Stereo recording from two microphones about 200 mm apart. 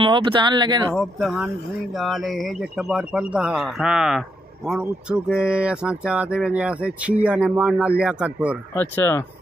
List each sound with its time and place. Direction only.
0.0 s speech: 25° right (ahead or behind)
0.9 s speech: centre (ahead or behind)
8.7 s speech: 10° left (ahead or behind)